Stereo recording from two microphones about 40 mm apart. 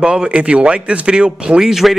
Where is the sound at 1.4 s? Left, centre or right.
Centre.